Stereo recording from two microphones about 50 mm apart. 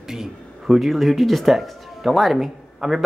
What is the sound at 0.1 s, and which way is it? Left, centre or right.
Speech, centre.